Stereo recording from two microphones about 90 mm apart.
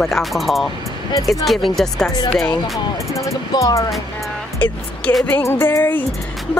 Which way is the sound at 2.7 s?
35° left (ahead or behind).